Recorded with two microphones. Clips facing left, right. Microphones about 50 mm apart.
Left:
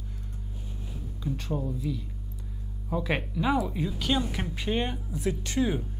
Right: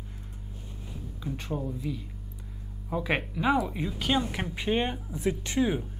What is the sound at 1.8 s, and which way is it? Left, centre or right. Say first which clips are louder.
Speech: left 2 dB; centre.